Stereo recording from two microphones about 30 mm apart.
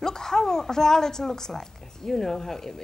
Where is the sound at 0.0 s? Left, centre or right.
Centre.